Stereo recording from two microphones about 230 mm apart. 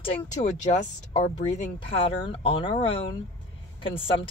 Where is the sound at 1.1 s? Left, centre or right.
Left.